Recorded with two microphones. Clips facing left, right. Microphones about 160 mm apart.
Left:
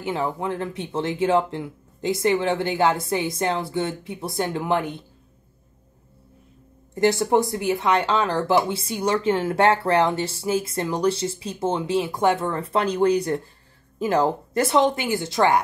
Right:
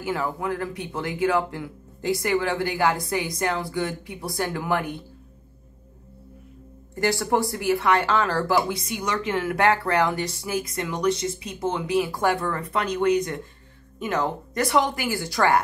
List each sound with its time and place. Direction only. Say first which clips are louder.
0.0 s speech: left 1 dB; 25° left (ahead or behind)
7.0 s speech: left 4 dB; 20° left (ahead or behind)